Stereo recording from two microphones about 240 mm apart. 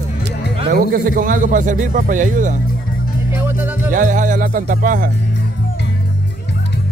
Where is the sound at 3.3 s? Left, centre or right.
Centre.